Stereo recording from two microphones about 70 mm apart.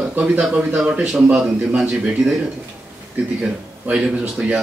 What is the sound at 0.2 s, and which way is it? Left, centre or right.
Speech, centre.